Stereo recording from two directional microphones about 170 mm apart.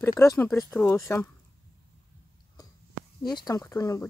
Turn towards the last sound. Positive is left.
turn(degrees=20)  # may be behind; listen again after turning